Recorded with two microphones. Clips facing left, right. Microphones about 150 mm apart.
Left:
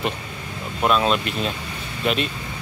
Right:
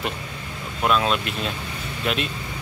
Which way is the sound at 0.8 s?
Centre (ahead or behind).